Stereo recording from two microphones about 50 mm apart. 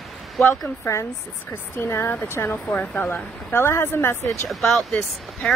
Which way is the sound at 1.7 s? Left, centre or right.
Left.